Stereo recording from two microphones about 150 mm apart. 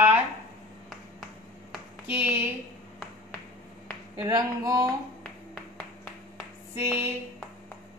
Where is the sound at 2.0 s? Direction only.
15° right (ahead or behind).